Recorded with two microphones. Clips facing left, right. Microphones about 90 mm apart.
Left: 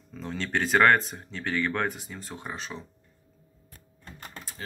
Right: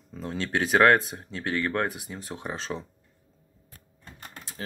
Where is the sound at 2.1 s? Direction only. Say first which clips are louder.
Right 3 dB; 30° right (ahead or behind).